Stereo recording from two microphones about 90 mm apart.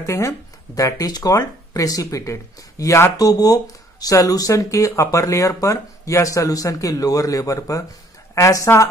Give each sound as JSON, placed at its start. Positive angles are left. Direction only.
{"t": 0.0, "sound": "speech", "side_deg": 35}